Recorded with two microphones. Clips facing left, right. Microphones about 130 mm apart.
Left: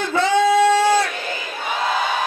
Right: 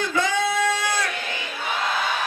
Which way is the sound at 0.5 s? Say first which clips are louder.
Left 9 dB; 35° left (ahead or behind).